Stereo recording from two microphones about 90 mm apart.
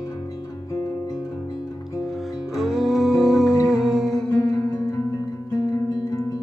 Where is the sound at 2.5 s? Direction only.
Centre (ahead or behind).